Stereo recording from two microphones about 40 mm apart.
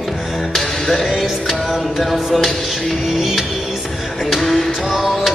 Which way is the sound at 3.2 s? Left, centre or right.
Centre.